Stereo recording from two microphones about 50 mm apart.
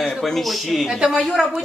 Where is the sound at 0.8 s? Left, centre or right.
Centre.